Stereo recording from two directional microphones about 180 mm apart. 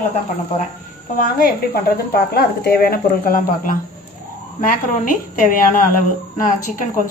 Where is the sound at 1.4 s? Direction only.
55° left (ahead or behind).